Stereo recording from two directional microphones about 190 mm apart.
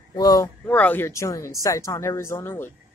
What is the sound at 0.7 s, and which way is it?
Speech, 10° left (ahead or behind).